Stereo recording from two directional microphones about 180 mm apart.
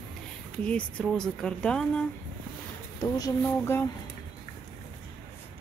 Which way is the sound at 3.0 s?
20° left (ahead or behind).